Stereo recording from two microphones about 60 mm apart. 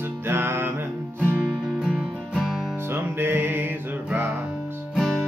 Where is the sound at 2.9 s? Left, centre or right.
Right.